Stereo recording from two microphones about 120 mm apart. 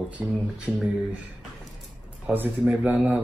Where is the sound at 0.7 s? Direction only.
10° left (ahead or behind).